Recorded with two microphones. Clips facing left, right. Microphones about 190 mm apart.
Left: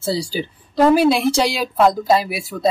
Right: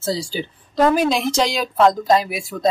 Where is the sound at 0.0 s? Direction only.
10° left (ahead or behind).